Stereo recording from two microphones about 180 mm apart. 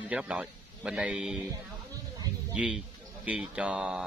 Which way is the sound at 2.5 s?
5° right (ahead or behind).